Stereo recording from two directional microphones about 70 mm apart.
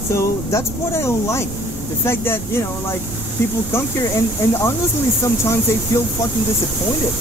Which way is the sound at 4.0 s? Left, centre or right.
Left.